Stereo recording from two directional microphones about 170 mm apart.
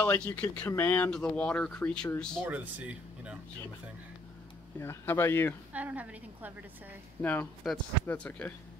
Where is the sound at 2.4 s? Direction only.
10° right (ahead or behind).